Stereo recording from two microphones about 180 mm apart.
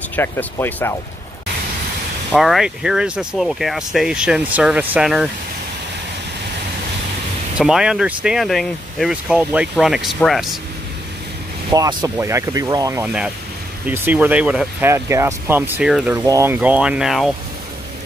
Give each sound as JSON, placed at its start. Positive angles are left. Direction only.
{"t": 0.1, "sound": "speech", "side_deg": 10}
{"t": 2.3, "sound": "speech", "side_deg": 0}
{"t": 7.5, "sound": "speech", "side_deg": -5}
{"t": 11.7, "sound": "speech", "side_deg": -20}